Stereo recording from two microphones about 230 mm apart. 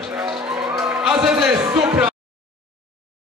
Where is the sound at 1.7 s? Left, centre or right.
Centre.